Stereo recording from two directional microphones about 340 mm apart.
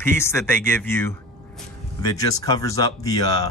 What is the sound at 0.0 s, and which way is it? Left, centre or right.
Speech, centre.